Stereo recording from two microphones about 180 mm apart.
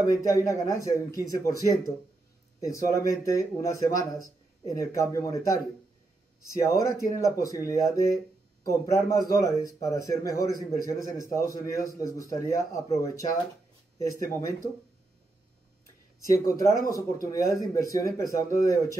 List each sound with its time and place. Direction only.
0.1 s a man's voice: 15° left (ahead or behind)
16.4 s a man's voice: 20° left (ahead or behind)